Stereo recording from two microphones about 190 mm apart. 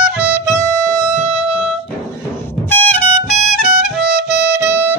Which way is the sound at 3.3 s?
40° left (ahead or behind).